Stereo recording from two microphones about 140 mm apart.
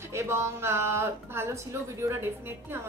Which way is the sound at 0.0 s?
20° right (ahead or behind).